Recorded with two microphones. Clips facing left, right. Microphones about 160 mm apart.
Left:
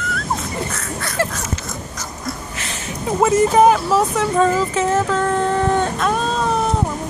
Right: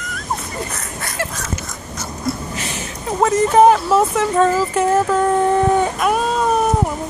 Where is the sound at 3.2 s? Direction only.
5° left (ahead or behind); by 6.6 s 10° right (ahead or behind).